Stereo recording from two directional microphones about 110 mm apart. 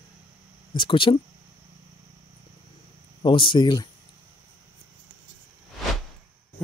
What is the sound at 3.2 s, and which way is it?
Speech, 50° left (ahead or behind).